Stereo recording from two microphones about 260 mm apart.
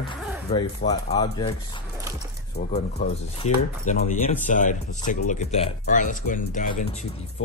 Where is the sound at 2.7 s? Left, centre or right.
Left.